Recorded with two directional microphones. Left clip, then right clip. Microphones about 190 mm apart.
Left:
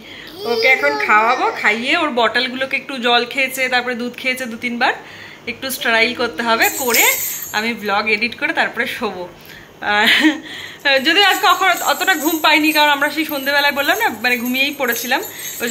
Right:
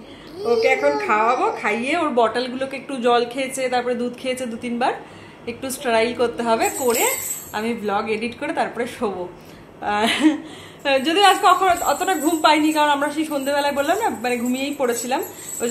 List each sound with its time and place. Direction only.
0.4 s speech: 15° right (ahead or behind)
0.7 s a woman's voice: centre (ahead or behind)